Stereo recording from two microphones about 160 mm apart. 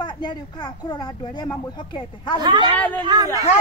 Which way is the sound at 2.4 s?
30° right (ahead or behind).